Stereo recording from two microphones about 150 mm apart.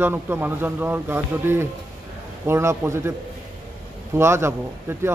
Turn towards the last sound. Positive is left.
turn(degrees=-15)  # may be behind; listen again after turning